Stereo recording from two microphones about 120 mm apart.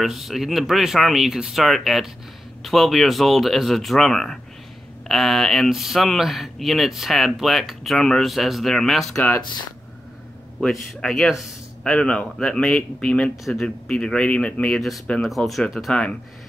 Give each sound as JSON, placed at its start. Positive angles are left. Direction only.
{"t": 0.0, "sound": "speech", "side_deg": 0}
{"t": 10.6, "sound": "speech", "side_deg": 5}